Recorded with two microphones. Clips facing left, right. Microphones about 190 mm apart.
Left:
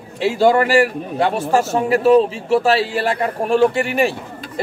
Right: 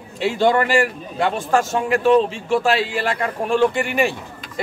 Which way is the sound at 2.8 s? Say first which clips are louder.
Left 3 dB; 40° left (ahead or behind).